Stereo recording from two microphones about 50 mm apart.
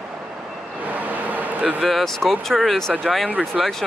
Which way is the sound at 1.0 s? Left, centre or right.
Right.